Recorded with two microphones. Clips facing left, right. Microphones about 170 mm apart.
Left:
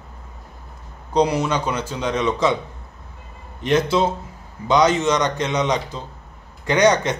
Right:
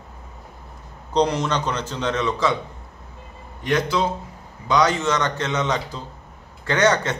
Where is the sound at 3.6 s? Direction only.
25° left (ahead or behind).